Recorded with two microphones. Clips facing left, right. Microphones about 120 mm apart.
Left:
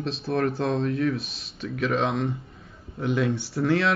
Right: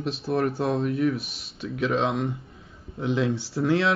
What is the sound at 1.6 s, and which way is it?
Speech, 20° right (ahead or behind).